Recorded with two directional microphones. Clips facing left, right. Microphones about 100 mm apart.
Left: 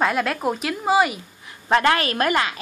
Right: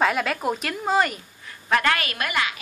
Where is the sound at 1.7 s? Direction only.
30° left (ahead or behind).